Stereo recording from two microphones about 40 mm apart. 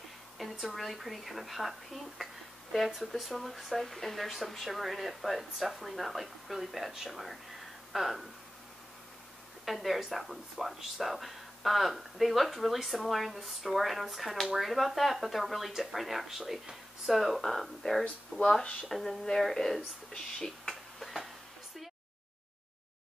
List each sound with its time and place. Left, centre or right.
0.4 s a sound: centre
0.7 s speech: centre
9.7 s speech: centre
18.6 s speech: left
18.9 s speech: centre
20.1 s a sound: centre